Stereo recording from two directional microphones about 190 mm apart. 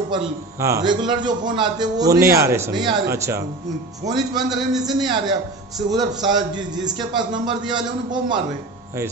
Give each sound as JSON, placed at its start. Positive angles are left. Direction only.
{"t": 0.1, "sound": "a man's voice", "side_deg": -15}